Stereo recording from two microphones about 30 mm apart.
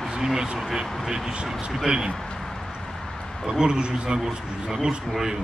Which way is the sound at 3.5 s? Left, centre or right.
Right.